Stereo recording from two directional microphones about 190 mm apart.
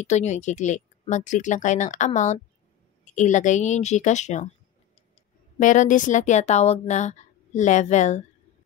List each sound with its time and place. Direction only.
0.0 s speech: 35° left (ahead or behind)
5.6 s speech: 40° left (ahead or behind)